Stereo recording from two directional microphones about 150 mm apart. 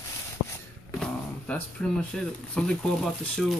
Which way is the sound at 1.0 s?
10° left (ahead or behind).